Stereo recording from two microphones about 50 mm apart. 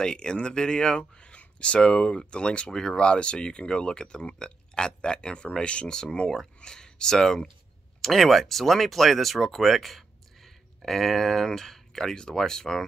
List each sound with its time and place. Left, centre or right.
0.0 s speech: centre